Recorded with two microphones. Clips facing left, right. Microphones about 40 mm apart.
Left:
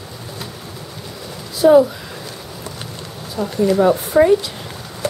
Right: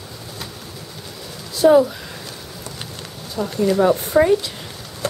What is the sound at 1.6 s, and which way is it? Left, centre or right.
Speech, centre.